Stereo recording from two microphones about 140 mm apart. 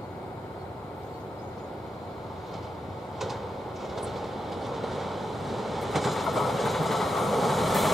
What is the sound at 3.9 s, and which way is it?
Train, centre (ahead or behind).